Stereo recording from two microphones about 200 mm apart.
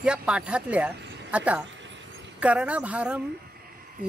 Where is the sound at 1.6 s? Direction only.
65° right (ahead or behind).